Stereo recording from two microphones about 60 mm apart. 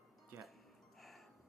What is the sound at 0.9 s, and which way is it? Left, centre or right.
Gasp, centre.